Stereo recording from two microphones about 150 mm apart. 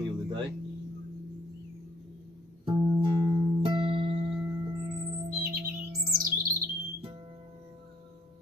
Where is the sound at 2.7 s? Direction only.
35° right (ahead or behind).